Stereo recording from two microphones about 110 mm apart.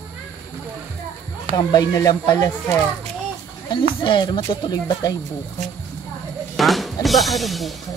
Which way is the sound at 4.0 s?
45° left (ahead or behind).